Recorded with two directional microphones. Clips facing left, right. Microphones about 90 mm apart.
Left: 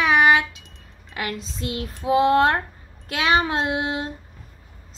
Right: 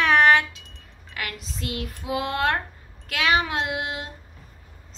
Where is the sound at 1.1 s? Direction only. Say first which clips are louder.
Left 4 dB; 25° left (ahead or behind).